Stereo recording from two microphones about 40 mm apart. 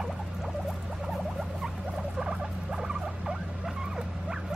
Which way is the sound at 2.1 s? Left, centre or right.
Centre.